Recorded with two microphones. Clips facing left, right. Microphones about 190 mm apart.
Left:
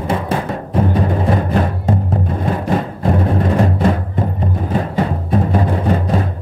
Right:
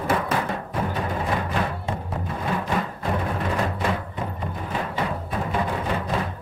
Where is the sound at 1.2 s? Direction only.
40° left (ahead or behind).